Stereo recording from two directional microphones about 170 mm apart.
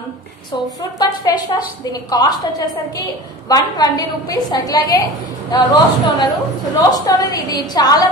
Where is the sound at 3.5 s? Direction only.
20° left (ahead or behind).